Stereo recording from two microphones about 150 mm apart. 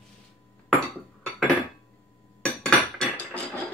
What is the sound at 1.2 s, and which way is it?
Dishes, centre (ahead or behind).